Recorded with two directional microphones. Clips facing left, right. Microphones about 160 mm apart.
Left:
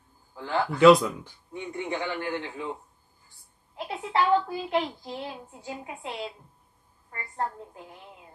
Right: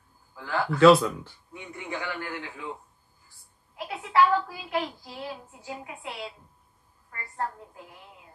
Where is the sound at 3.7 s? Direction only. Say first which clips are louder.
Right 2 dB; 25° left (ahead or behind).